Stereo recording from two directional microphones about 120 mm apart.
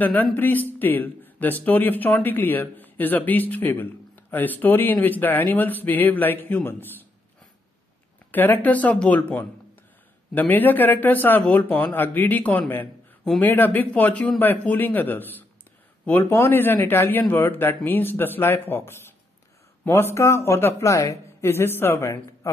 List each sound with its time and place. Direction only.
0.0 s a man's voice: 15° left (ahead or behind)
8.3 s a man's voice: 15° left (ahead or behind)